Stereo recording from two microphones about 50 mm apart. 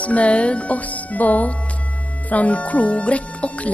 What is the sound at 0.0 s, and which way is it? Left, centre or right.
Speech, left.